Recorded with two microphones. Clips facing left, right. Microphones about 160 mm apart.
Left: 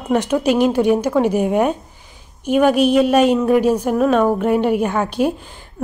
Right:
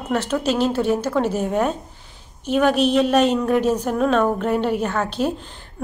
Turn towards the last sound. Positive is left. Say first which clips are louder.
# left 4 dB
turn(degrees=10)  # may be behind; listen again after turning